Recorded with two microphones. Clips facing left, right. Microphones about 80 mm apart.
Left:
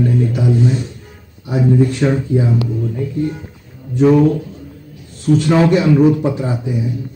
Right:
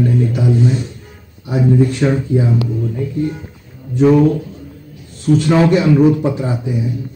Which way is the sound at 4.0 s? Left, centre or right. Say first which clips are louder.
Even; centre.